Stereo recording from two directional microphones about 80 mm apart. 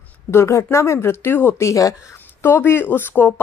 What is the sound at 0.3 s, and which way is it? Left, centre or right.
A woman's voice, left.